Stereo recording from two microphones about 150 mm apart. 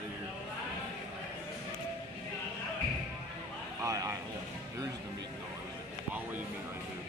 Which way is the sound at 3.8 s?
20° right (ahead or behind).